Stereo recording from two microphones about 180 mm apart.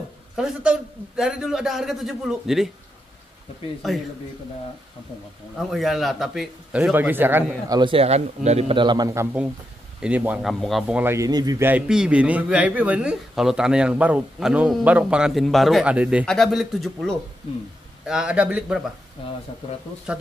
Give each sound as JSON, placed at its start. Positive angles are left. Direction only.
{"t": 0.4, "sound": "a man's voice", "side_deg": -5}
{"t": 3.8, "sound": "a man's voice", "side_deg": 0}
{"t": 5.6, "sound": "a man's voice", "side_deg": 0}
{"t": 7.8, "sound": "a man's voice", "side_deg": -30}
{"t": 20.1, "sound": "a man's voice", "side_deg": -5}